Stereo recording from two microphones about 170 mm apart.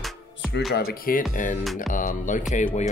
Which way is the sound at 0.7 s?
55° left (ahead or behind).